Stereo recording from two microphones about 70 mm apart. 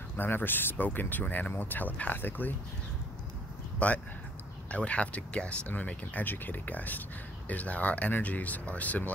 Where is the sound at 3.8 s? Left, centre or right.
Centre.